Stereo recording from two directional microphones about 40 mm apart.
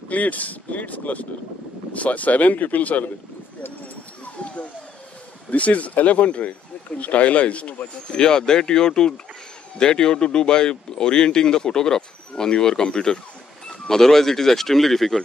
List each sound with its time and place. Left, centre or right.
0.1 s speech: left
4.4 s a sound: left
5.5 s speech: left
8.1 s speech: centre